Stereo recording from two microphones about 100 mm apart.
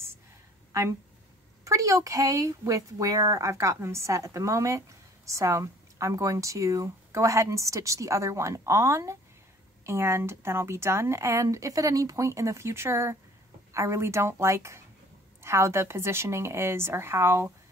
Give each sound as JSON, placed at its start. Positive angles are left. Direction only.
{"t": 1.6, "sound": "a woman's voice", "side_deg": -35}